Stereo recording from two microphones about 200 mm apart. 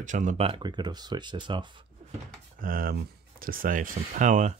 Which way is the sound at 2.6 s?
45° right (ahead or behind).